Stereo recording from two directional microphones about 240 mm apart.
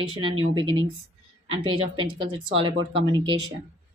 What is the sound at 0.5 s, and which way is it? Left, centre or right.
Speech, right.